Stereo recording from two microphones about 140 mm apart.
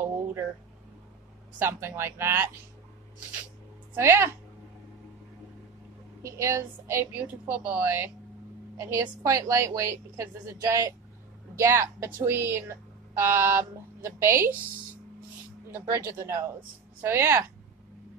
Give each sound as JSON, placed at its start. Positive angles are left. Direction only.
{"t": 0.0, "sound": "a sound", "side_deg": -15}
{"t": 1.6, "sound": "a woman's voice", "side_deg": -15}
{"t": 3.9, "sound": "speech", "side_deg": -20}
{"t": 6.2, "sound": "a woman's voice", "side_deg": -20}
{"t": 15.7, "sound": "a woman's voice", "side_deg": -20}